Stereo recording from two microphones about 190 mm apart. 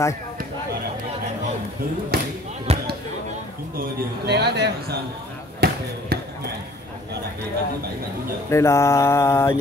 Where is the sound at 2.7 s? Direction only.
30° right (ahead or behind).